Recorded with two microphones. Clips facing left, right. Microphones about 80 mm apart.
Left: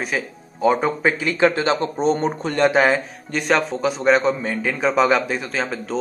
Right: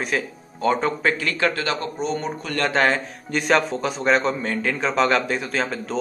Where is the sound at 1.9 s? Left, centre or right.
Left.